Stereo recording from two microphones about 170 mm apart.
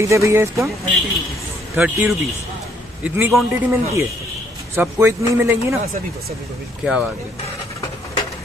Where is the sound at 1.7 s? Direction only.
5° right (ahead or behind).